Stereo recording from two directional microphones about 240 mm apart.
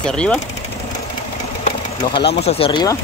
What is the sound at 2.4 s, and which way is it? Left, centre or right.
Speech, left.